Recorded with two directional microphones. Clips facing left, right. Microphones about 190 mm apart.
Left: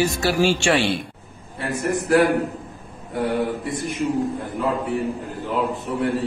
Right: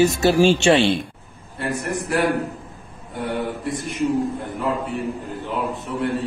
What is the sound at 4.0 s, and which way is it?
Speech, centre (ahead or behind).